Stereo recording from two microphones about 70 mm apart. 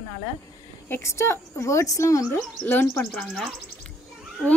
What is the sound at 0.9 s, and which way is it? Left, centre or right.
Speech, left.